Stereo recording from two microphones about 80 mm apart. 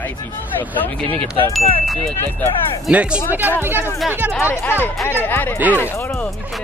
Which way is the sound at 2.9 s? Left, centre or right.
Centre.